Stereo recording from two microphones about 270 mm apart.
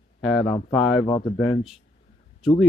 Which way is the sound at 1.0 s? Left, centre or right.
Centre.